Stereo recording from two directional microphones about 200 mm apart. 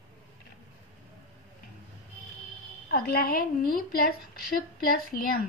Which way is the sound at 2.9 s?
50° left (ahead or behind).